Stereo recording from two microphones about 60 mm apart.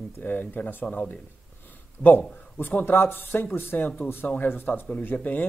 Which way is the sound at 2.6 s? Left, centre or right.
Left.